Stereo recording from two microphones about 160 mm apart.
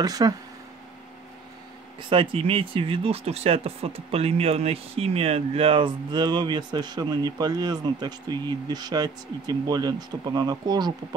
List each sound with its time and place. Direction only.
0.0 s speech: 25° right (ahead or behind)
2.0 s speech: 35° right (ahead or behind)